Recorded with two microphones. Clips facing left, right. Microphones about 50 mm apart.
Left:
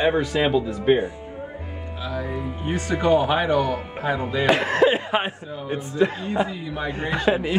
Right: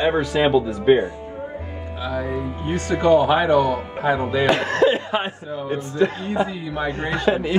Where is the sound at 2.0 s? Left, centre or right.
Centre.